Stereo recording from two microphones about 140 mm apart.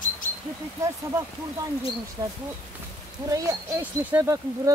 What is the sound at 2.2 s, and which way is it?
Speech, 25° right (ahead or behind).